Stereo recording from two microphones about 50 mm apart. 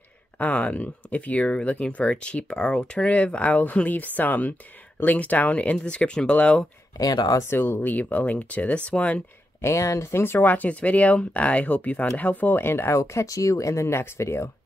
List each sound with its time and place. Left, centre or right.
0.4 s speech: left
7.5 s speech: left
7.8 s speech: left
9.6 s speech: left
10.1 s speech: left
10.4 s speech: left
12.6 s speech: left